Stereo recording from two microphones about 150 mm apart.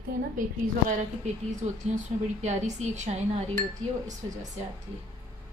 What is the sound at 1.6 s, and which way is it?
A woman's voice, 45° right (ahead or behind).